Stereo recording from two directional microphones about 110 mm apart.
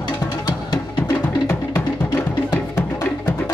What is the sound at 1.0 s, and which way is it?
Music, 20° left (ahead or behind).